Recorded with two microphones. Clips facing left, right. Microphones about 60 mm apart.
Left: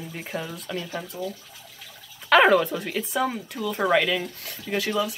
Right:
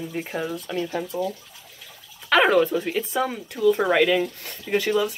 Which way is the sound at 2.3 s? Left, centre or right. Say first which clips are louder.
Even; centre.